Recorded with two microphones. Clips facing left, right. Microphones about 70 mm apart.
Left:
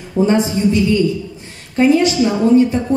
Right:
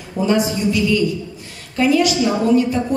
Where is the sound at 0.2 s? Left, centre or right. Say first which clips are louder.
Left 3 dB; left.